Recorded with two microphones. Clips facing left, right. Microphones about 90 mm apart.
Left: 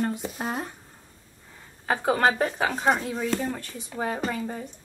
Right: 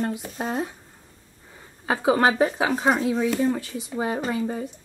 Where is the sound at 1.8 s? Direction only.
5° right (ahead or behind).